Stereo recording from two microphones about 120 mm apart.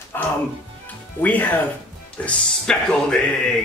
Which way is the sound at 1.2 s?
15° left (ahead or behind).